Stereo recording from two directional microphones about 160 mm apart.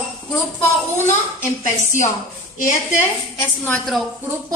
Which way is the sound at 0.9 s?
15° left (ahead or behind).